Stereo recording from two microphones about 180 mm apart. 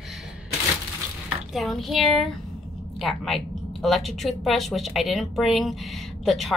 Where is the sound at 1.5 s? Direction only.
Centre (ahead or behind).